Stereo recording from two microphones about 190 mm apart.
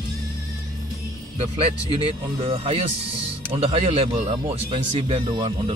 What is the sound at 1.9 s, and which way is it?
Speech, 30° right (ahead or behind).